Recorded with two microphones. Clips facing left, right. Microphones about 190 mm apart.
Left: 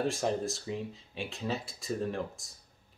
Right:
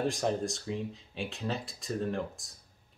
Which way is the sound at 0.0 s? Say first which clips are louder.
Even; centre (ahead or behind).